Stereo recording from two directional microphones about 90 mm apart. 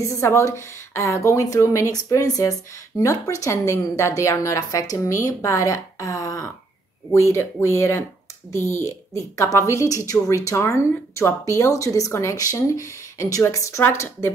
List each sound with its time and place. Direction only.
0.0 s a woman's voice: 35° left (ahead or behind)